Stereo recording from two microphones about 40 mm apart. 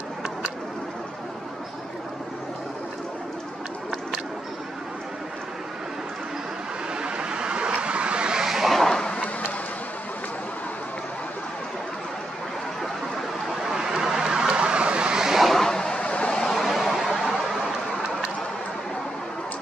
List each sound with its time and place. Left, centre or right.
7.0 s vehicle: right
8.5 s vehicle: centre
8.7 s a sound: centre
9.0 s a sound: left
13.7 s vehicle: centre
15.4 s vehicle: centre
15.7 s vehicle: centre
16.0 s vehicle: left
16.4 s a sound: centre